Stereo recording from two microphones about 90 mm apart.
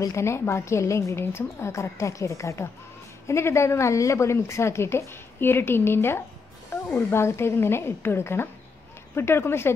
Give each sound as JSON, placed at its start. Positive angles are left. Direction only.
{"t": 0.0, "sound": "a woman's voice", "side_deg": 30}